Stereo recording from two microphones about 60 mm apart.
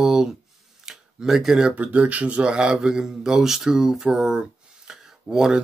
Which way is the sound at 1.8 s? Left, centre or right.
Right.